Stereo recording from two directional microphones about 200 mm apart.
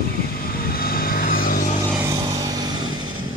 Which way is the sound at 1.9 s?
15° right (ahead or behind).